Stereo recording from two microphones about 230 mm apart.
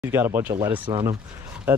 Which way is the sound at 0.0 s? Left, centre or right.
Centre.